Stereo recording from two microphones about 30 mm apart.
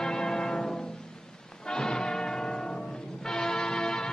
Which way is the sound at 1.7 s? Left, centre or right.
Left.